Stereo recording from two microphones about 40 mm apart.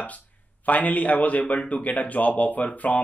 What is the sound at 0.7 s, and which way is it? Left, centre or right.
Speech, left.